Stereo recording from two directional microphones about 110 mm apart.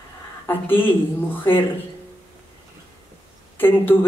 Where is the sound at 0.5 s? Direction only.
20° left (ahead or behind).